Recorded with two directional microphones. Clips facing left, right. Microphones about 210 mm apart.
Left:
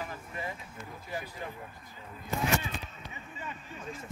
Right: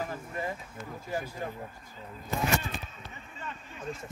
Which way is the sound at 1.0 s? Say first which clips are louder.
Right 4 dB; 45° right (ahead or behind).